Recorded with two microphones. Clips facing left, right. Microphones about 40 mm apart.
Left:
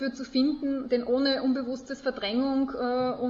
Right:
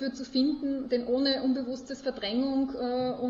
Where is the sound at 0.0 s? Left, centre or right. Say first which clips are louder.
Left 2 dB; left.